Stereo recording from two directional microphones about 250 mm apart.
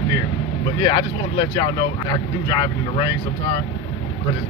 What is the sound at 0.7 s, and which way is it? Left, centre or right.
Speech, centre.